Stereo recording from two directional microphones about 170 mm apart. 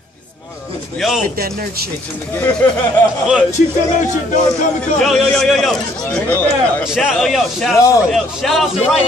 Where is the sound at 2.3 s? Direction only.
10° left (ahead or behind).